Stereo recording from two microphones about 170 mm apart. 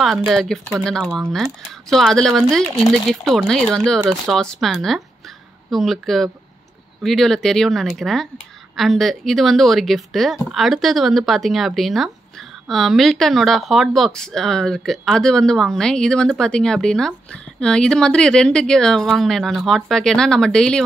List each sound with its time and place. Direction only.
0.0 s speech: centre (ahead or behind)